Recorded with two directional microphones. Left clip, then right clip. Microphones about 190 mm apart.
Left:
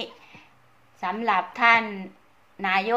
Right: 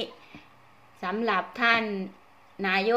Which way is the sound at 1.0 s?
30° right (ahead or behind).